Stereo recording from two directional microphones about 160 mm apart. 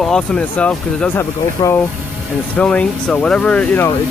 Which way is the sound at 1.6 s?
20° left (ahead or behind).